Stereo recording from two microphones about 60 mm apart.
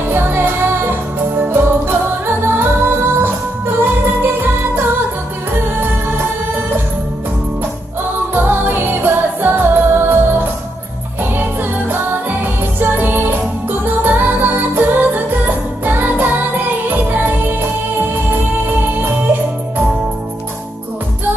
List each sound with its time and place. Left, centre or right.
0.1 s music: right
8.4 s music: right
12.7 s music: right